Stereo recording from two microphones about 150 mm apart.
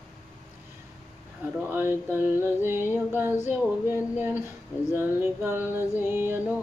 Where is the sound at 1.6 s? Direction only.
15° right (ahead or behind).